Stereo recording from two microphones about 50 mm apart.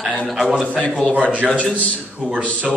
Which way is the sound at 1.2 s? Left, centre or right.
Right.